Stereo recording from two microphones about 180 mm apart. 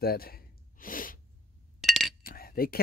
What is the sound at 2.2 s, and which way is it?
Chink, 55° left (ahead or behind).